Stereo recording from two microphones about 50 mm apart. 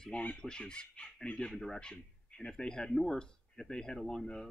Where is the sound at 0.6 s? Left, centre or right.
Left.